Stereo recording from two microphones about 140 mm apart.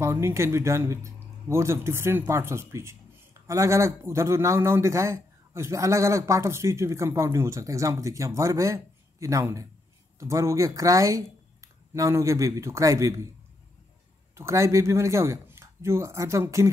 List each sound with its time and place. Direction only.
0.0 s a man's voice: 20° right (ahead or behind)
14.3 s a man's voice: 20° right (ahead or behind)